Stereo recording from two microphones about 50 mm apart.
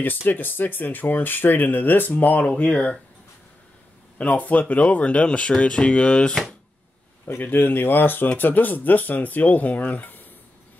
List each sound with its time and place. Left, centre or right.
0.0 s speech: left
4.2 s speech: left
7.4 s speech: left